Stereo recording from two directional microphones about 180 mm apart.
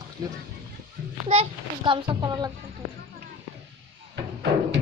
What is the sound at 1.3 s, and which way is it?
Speech, 30° right (ahead or behind).